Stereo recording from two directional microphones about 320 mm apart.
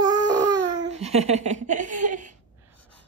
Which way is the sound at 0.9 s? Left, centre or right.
Centre.